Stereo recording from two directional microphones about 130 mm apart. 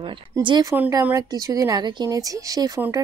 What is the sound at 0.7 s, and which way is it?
A woman's voice, 25° right (ahead or behind).